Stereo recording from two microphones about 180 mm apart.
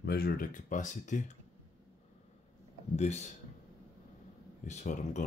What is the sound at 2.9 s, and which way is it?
Speech, 40° left (ahead or behind).